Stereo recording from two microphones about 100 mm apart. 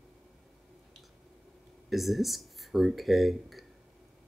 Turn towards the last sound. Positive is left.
turn(degrees=0)  # may be behind; listen again after turning